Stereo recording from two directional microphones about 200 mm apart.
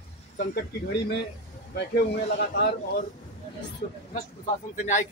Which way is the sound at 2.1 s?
55° left (ahead or behind).